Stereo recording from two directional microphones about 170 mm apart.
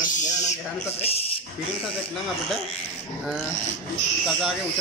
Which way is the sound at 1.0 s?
35° left (ahead or behind).